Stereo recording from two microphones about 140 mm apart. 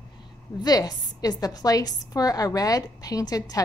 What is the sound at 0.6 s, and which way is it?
A woman's voice, 30° left (ahead or behind).